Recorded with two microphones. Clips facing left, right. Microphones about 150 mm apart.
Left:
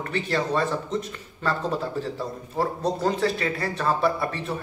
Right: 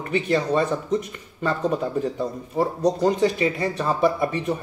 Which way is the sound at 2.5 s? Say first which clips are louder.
Right 4 dB; 20° right (ahead or behind).